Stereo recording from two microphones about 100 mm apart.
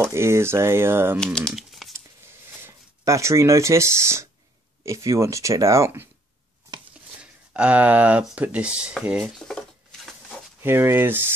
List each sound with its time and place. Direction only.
0.0 s speech: 25° right (ahead or behind)
1.2 s speech: 5° left (ahead or behind)
1.5 s typing: centre (ahead or behind)
2.6 s speech: 30° right (ahead or behind)
7.2 s speech: 10° right (ahead or behind)
9.5 s a sound: 5° left (ahead or behind)
10.6 s speech: 25° right (ahead or behind)